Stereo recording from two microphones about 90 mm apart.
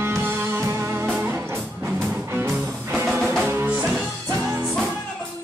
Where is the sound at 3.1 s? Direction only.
10° right (ahead or behind).